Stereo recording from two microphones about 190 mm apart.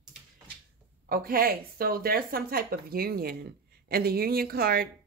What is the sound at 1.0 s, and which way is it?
Speech, 50° right (ahead or behind).